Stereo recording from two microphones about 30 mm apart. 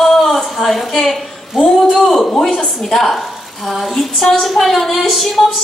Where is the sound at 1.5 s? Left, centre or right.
Centre.